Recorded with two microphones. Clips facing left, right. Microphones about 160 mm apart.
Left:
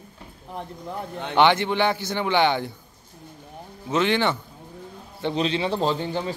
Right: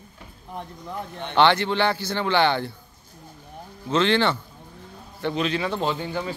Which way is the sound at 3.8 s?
15° left (ahead or behind).